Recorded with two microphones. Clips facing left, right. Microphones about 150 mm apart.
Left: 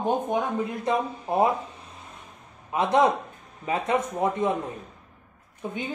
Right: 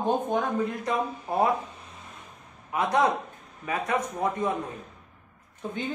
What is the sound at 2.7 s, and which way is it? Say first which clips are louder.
Speech: left 3 dB; 25° left (ahead or behind).